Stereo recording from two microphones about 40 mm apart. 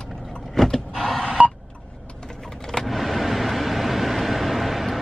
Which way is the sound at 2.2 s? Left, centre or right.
Centre.